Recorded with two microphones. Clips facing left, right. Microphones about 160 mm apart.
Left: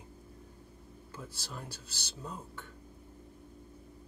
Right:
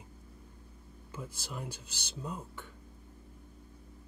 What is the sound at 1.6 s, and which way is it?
Speech, 10° left (ahead or behind).